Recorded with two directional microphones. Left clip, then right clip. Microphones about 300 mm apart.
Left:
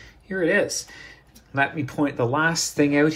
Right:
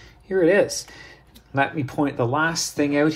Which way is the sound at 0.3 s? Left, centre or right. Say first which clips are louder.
Right 4 dB; centre.